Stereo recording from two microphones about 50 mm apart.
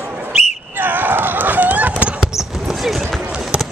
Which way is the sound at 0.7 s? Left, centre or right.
Right.